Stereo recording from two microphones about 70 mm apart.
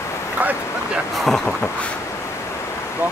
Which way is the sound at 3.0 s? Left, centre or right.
Right.